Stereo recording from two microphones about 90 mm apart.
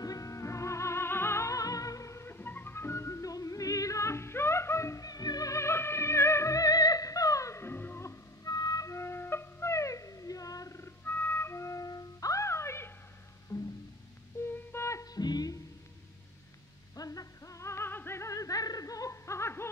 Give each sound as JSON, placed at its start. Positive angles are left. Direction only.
{"t": 0.0, "sound": "music", "side_deg": 40}
{"t": 8.5, "sound": "music", "side_deg": 45}
{"t": 11.1, "sound": "music", "side_deg": 25}
{"t": 13.5, "sound": "music", "side_deg": 40}
{"t": 14.5, "sound": "a sound", "side_deg": 30}
{"t": 15.1, "sound": "music", "side_deg": 50}
{"t": 16.9, "sound": "music", "side_deg": 40}